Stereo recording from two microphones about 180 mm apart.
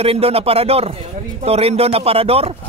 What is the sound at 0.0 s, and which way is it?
A man's voice, 35° right (ahead or behind).